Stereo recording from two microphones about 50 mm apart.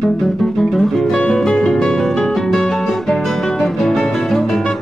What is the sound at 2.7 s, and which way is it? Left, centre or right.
Guitar, centre.